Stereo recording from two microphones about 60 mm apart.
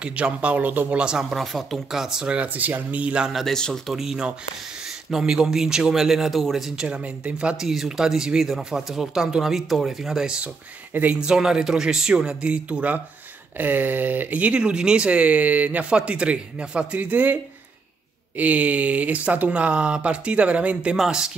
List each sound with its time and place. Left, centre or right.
0.0 s speech: right
0.9 s speech: centre
1.3 s speech: centre
2.3 s speech: right
3.3 s speech: centre
3.5 s speech: centre
3.9 s speech: centre
6.9 s speech: right
7.5 s speech: centre
10.9 s speech: right
11.1 s speech: centre; by 17.4 s right
18.4 s speech: right